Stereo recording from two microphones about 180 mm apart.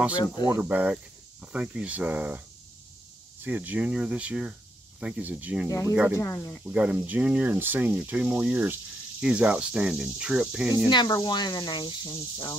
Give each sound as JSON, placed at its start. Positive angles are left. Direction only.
{"t": 0.5, "sound": "speech", "side_deg": -10}
{"t": 3.4, "sound": "speech", "side_deg": -10}
{"t": 6.1, "sound": "speech", "side_deg": 15}
{"t": 6.6, "sound": "speech", "side_deg": -5}
{"t": 10.9, "sound": "speech", "side_deg": 25}